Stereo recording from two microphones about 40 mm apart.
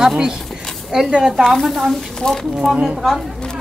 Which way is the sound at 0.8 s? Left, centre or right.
Centre.